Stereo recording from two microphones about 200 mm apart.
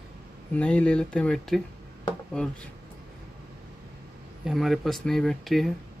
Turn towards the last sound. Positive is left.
turn(degrees=0)  # may be behind; listen again after turning